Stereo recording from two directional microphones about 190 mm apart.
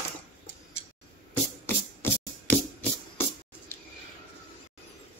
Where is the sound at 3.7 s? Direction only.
10° left (ahead or behind).